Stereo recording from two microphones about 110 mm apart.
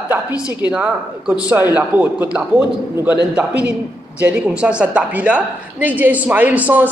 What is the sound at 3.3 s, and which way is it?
A woman's voice, 10° right (ahead or behind).